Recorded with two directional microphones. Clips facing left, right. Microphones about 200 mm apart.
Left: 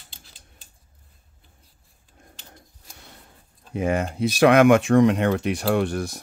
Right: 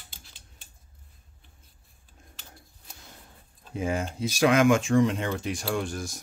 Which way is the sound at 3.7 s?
65° left (ahead or behind).